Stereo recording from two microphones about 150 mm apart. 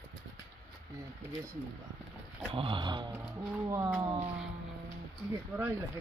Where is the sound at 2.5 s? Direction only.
35° right (ahead or behind).